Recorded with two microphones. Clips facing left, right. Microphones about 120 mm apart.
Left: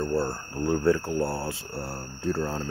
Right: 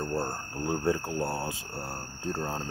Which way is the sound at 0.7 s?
20° right (ahead or behind).